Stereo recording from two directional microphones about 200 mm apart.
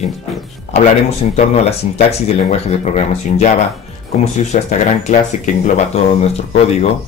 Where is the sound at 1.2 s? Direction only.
35° left (ahead or behind).